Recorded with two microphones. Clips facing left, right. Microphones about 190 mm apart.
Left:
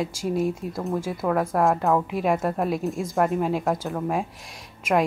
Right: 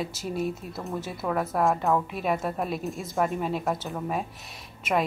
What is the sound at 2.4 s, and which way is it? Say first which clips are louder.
A woman's voice: left 5 dB; centre (ahead or behind).